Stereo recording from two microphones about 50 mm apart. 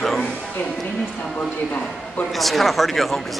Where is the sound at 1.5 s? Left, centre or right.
Left.